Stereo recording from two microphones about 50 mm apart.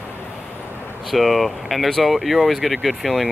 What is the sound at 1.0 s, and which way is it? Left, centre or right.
Speech, centre.